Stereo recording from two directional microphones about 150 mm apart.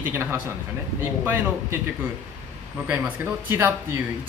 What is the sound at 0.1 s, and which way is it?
Speech, 15° right (ahead or behind).